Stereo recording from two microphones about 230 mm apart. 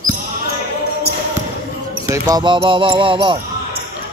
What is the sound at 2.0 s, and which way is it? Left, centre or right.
Speech, centre.